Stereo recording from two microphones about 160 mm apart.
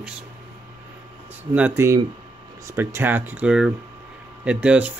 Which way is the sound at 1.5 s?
15° right (ahead or behind).